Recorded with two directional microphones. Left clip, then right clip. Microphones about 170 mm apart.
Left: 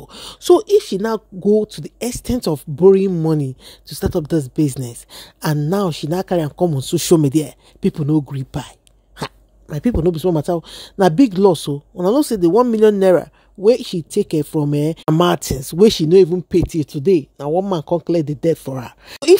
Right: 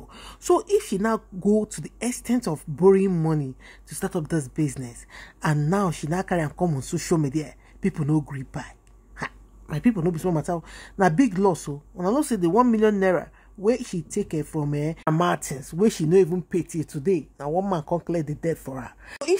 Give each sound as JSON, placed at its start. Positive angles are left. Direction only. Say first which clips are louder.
{"t": 0.0, "sound": "speech", "louder": "left 10 dB", "side_deg": 45}
{"t": 2.0, "sound": "speech", "louder": "left 5 dB", "side_deg": 40}
{"t": 3.3, "sound": "speech", "louder": "left 8 dB", "side_deg": 50}
{"t": 3.9, "sound": "speech", "louder": "left 8 dB", "side_deg": 35}
{"t": 6.9, "sound": "speech", "louder": "left 11 dB", "side_deg": 50}
{"t": 7.9, "sound": "speech", "louder": "left 7 dB", "side_deg": 30}
{"t": 8.3, "sound": "speech", "louder": "left 7 dB", "side_deg": 50}
{"t": 9.7, "sound": "speech", "louder": "left 6 dB", "side_deg": 40}